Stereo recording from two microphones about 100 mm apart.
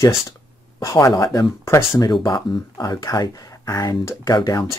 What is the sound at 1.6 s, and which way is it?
Speech, 25° left (ahead or behind).